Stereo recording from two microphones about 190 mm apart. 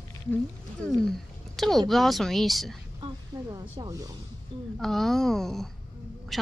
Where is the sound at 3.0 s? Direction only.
20° right (ahead or behind).